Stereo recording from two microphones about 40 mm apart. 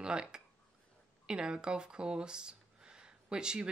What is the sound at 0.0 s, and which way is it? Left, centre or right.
Speech, right.